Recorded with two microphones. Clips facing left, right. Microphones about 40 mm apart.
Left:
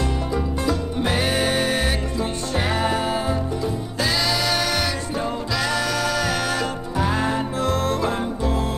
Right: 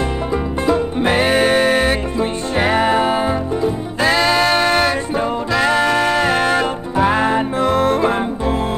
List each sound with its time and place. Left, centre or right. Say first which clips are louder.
0.3 s music: right 8 dB; right